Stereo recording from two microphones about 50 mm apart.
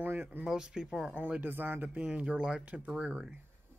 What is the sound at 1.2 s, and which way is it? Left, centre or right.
Speech, right.